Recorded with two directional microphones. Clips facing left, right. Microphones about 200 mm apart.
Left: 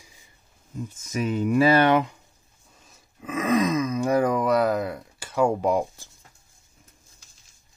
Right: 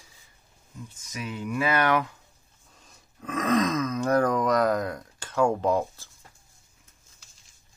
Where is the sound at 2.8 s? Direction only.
5° left (ahead or behind).